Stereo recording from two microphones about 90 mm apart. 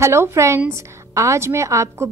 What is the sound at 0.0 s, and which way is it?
A woman's voice, 30° right (ahead or behind).